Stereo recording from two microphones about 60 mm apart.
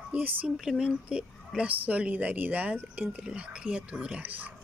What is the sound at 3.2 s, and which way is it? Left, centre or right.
Speech, centre.